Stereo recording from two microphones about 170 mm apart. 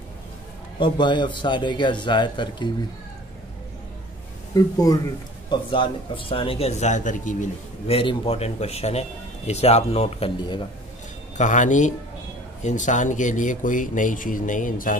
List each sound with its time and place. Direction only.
0.7 s a man's voice: 25° left (ahead or behind)
4.6 s a man's voice: 20° left (ahead or behind); by 7.9 s 50° left (ahead or behind)
7.9 s a man's voice: 35° left (ahead or behind)
11.3 s speech: 45° left (ahead or behind)